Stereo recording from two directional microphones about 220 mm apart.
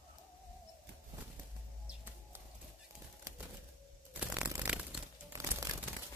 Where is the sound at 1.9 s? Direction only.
10° right (ahead or behind).